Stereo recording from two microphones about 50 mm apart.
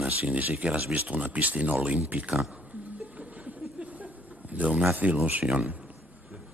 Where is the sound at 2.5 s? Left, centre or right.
Right.